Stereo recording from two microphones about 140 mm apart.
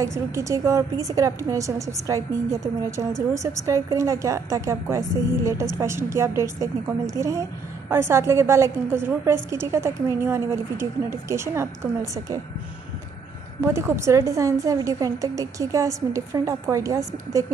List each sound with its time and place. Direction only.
0.0 s a woman's voice: 20° right (ahead or behind)
13.6 s a woman's voice: 20° right (ahead or behind)